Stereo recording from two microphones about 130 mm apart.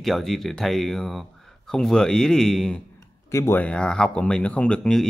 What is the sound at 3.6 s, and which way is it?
Speech, 5° left (ahead or behind).